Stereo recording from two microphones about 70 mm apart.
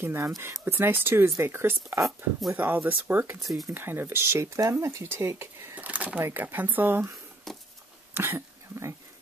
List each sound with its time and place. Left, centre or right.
0.0 s speech: right
2.5 s speech: right
5.8 s a sound: right
6.3 s speech: right
7.5 s a sound: centre
8.1 s speech: right